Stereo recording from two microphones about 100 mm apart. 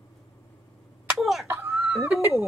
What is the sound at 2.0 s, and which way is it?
Speech, 30° right (ahead or behind).